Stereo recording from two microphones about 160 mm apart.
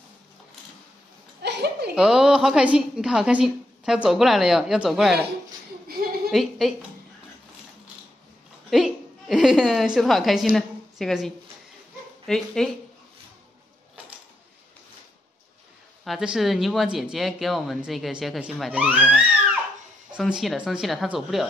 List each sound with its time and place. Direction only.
1.4 s a sound: 90° right
2.0 s speech: 5° right (ahead or behind)
5.9 s a sound: 70° right (ahead or behind)
6.3 s speech: centre (ahead or behind)
8.6 s a woman's voice: centre (ahead or behind)
16.0 s speech: centre (ahead or behind)